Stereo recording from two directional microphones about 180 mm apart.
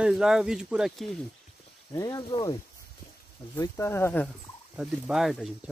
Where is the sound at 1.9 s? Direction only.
20° left (ahead or behind).